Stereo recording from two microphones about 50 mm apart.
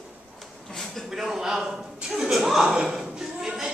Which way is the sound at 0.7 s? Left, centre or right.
Centre.